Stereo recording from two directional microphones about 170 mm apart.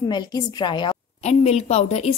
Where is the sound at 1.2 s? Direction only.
40° left (ahead or behind).